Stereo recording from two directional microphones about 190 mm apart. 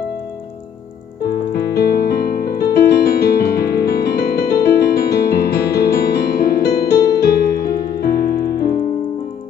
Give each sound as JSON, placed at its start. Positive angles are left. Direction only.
{"t": 1.2, "sound": "piano", "side_deg": 55}